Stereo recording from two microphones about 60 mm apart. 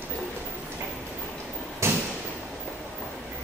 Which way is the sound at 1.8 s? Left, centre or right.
Right.